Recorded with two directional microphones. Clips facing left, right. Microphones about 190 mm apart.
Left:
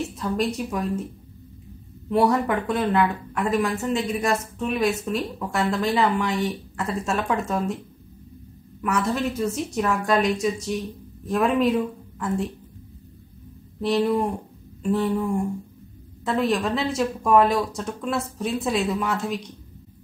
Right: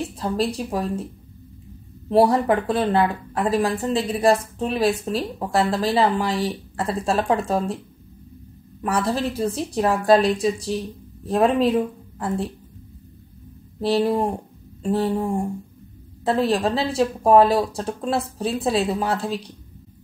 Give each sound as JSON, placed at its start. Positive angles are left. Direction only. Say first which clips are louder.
{"t": 0.1, "sound": "speech", "louder": "right 1 dB", "side_deg": -30}
{"t": 2.0, "sound": "speech", "louder": "right 3 dB", "side_deg": -30}
{"t": 8.8, "sound": "speech", "louder": "right 1 dB", "side_deg": -30}
{"t": 13.7, "sound": "speech", "louder": "right 1 dB", "side_deg": -30}